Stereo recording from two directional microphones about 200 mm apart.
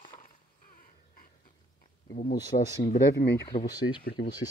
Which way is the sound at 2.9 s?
55° left (ahead or behind).